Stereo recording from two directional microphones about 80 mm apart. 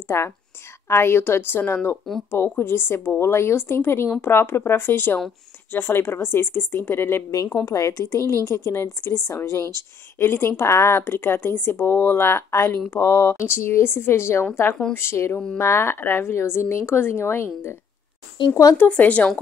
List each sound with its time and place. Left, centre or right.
0.1 s a woman's voice: left
7.6 s a woman's voice: left
18.4 s speech: left
18.8 s a woman's voice: centre